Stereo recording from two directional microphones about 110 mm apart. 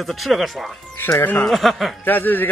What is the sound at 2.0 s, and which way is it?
Speech, 15° left (ahead or behind).